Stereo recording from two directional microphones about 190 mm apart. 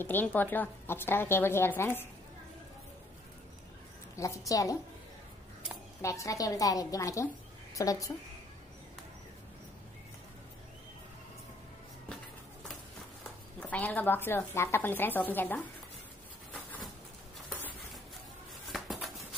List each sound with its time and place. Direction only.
0.0 s a woman's voice: 10° left (ahead or behind)
4.5 s a woman's voice: 15° left (ahead or behind)
6.0 s a woman's voice: 15° left (ahead or behind)
13.6 s a woman's voice: 10° left (ahead or behind)
16.5 s bird: 5° left (ahead or behind)
18.7 s a sound: centre (ahead or behind)